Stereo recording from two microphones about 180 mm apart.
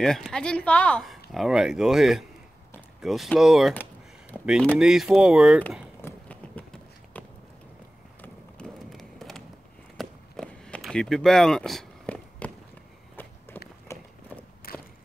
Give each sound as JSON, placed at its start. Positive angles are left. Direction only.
{"t": 0.0, "sound": "speech", "side_deg": 5}
{"t": 5.9, "sound": "run", "side_deg": 10}
{"t": 8.2, "sound": "a sound", "side_deg": 5}
{"t": 9.9, "sound": "run", "side_deg": 0}
{"t": 13.1, "sound": "walk", "side_deg": 10}
{"t": 13.9, "sound": "horse", "side_deg": 15}
{"t": 14.3, "sound": "walk", "side_deg": 10}
{"t": 14.7, "sound": "a sound", "side_deg": 55}